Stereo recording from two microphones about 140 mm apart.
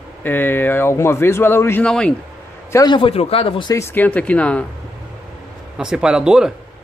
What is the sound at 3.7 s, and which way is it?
Speech, 15° left (ahead or behind).